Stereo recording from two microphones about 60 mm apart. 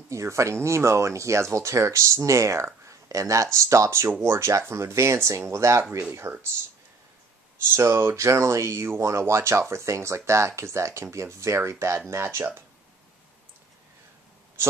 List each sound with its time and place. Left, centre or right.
0.1 s speech: right
2.9 s a sound: right
3.5 s speech: right
7.7 s speech: right